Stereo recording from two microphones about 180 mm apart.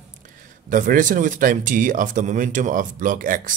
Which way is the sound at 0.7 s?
50° right (ahead or behind).